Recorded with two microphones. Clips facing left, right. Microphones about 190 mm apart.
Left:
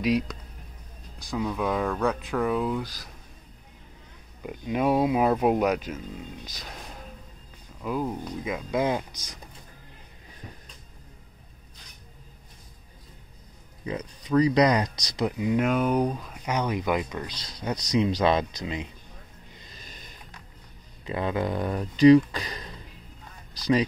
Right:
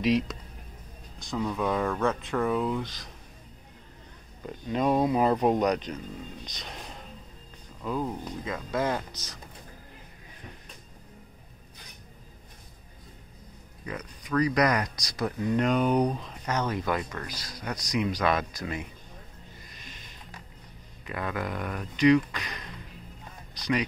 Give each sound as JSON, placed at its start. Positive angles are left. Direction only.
{"t": 0.0, "sound": "speech", "side_deg": 0}
{"t": 4.4, "sound": "speech", "side_deg": 10}
{"t": 13.8, "sound": "speech", "side_deg": 25}
{"t": 19.6, "sound": "a sound", "side_deg": 30}
{"t": 21.0, "sound": "speech", "side_deg": 25}